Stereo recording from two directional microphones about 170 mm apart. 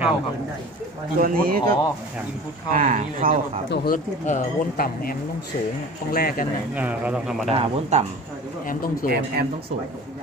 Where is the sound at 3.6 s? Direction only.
75° left (ahead or behind).